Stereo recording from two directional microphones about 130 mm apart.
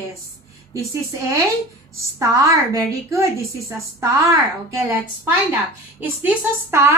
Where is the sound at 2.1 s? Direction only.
25° right (ahead or behind).